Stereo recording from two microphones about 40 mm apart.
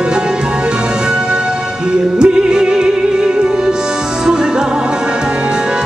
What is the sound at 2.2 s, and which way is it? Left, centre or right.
Music, centre.